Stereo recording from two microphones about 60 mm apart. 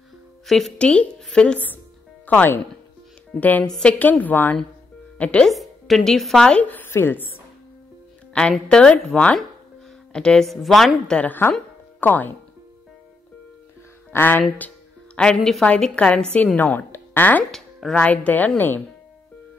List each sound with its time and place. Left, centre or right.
0.5 s speech: centre
0.7 s a woman's voice: centre
2.2 s a woman's voice: left
5.1 s speech: left
5.5 s speech: centre
6.6 s a woman's voice: left
8.3 s a woman's voice: centre
10.4 s speech: centre
11.2 s a woman's voice: left
14.1 s a woman's voice: left
15.1 s a woman's voice: centre; by 17.5 s left
17.5 s speech: centre
17.9 s a woman's voice: left